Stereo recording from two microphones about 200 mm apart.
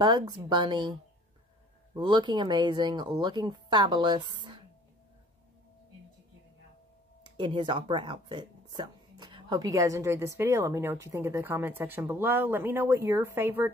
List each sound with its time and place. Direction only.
0.0 s speech: 20° right (ahead or behind)
2.0 s speech: 20° right (ahead or behind)
7.2 s speech: 25° right (ahead or behind)